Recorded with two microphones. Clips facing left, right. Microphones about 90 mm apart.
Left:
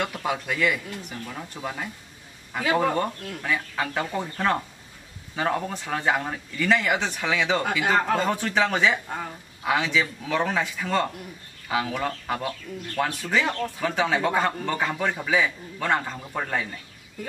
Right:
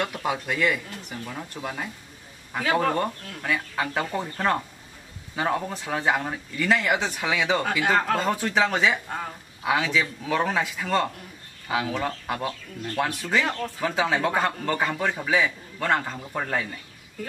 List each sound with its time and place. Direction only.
0.0 s speech: 5° right (ahead or behind)